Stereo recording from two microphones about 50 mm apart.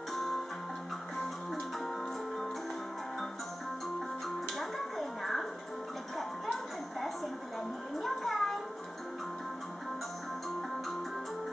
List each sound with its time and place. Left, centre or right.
0.1 s music: centre
4.6 s a sound: centre
8.0 s music: centre